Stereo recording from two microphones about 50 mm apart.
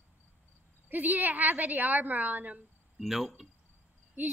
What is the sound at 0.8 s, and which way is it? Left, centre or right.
A woman's voice, right.